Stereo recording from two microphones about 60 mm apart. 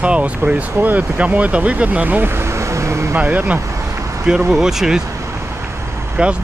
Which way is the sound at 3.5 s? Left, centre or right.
Right.